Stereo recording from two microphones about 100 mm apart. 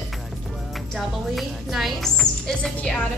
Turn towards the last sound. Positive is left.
turn(degrees=5)  # may be behind; listen again after turning